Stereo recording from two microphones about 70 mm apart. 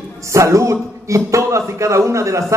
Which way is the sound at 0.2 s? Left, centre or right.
Right.